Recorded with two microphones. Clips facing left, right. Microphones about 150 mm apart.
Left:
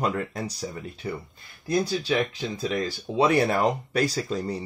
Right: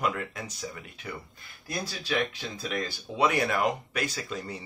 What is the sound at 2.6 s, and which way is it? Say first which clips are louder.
Speech: left 5 dB; 30° left (ahead or behind).